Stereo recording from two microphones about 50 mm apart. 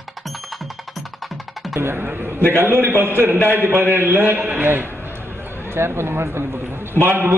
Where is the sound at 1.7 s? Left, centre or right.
Right.